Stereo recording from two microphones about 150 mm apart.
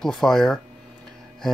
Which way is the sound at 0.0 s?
Centre (ahead or behind).